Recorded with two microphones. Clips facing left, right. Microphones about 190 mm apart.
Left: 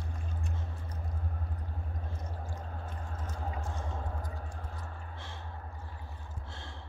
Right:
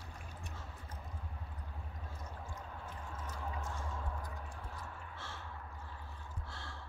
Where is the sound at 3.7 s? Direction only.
60° left (ahead or behind).